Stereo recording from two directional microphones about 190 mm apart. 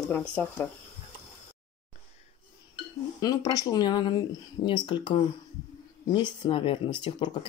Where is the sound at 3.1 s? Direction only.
20° left (ahead or behind).